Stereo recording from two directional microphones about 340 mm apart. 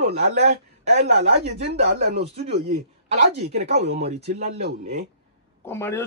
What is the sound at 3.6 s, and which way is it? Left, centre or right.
Speech, right.